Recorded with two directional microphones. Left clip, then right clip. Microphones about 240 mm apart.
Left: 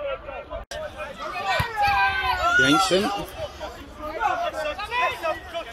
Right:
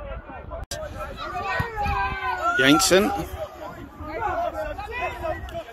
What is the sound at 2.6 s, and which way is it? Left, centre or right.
Speech, centre.